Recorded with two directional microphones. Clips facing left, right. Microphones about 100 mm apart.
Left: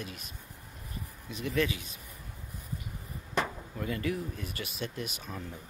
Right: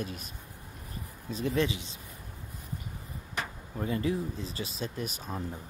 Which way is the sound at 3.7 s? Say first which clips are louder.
Right 3 dB; 25° right (ahead or behind).